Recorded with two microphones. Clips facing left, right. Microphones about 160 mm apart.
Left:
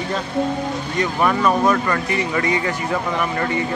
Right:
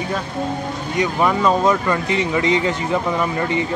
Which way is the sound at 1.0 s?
15° right (ahead or behind).